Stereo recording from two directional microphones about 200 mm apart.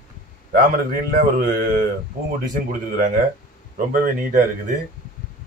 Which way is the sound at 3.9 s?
45° right (ahead or behind).